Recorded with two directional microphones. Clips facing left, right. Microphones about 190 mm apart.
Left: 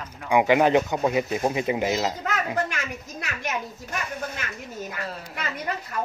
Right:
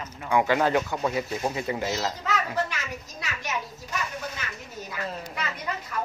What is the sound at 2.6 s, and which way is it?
Speech, 50° left (ahead or behind).